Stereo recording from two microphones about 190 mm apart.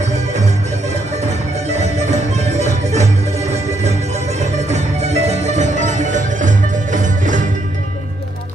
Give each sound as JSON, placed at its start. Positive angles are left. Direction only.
{"t": 0.0, "sound": "music", "side_deg": -35}